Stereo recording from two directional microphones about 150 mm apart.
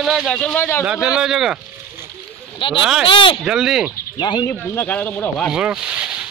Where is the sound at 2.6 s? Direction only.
35° left (ahead or behind).